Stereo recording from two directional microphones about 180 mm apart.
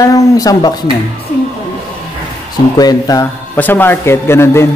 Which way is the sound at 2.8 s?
20° left (ahead or behind).